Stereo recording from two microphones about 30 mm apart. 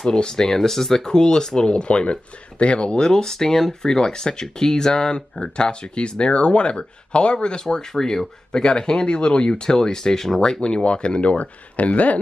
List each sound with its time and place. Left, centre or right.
0.1 s speech: left
0.6 s speech: centre
1.0 s speech: left
3.0 s speech: centre
7.9 s speech: centre
10.6 s speech: left